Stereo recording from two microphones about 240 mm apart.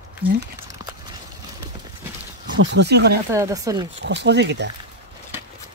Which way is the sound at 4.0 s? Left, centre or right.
Right.